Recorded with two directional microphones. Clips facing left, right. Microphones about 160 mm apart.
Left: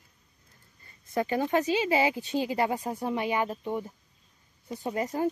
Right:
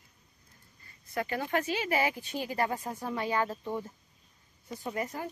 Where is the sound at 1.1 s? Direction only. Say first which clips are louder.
Left 5 dB; 25° left (ahead or behind).